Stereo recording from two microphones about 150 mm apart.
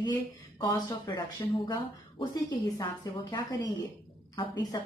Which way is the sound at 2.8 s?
30° left (ahead or behind).